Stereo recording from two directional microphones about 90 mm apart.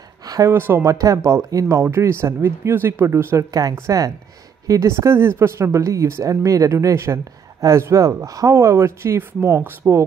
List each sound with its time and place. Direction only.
0.2 s a sound: 45° right (ahead or behind)
0.5 s speech: 25° right (ahead or behind)
3.8 s speech: 40° right (ahead or behind)